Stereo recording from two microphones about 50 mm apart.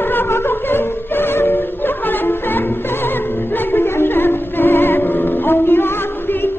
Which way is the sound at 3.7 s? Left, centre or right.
Left.